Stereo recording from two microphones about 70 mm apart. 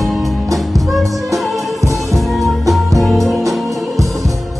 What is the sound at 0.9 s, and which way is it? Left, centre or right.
Music, centre.